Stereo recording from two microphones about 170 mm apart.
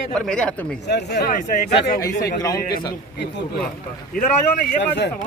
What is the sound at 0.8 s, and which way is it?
Speech, 75° left (ahead or behind).